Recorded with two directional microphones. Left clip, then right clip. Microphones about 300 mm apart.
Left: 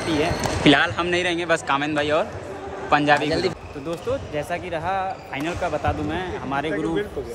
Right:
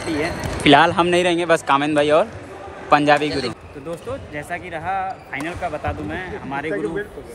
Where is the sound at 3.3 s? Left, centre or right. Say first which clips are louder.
Left 1 dB; left.